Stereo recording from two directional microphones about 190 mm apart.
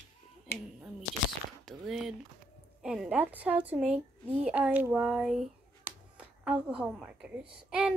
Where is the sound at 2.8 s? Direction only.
5° right (ahead or behind).